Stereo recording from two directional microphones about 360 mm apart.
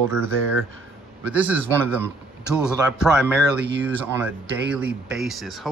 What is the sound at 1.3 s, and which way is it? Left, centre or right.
Speech, centre.